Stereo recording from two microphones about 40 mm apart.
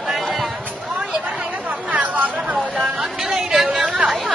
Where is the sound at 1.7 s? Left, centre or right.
Right.